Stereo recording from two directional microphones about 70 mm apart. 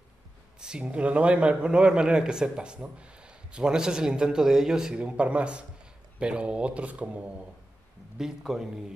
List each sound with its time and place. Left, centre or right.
0.6 s a man's voice: centre
8.2 s a man's voice: centre